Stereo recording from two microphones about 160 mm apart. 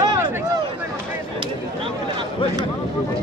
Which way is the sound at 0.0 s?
25° right (ahead or behind).